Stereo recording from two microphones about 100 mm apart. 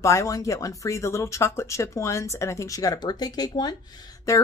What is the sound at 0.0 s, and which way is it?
Speech, 30° left (ahead or behind).